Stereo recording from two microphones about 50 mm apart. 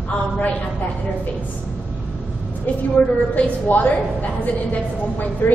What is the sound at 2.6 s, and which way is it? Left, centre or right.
A woman's voice, left.